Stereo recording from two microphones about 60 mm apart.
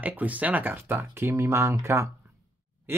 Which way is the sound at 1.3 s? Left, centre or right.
Right.